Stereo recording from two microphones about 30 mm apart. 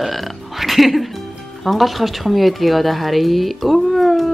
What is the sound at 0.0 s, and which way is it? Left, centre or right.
Burping, centre.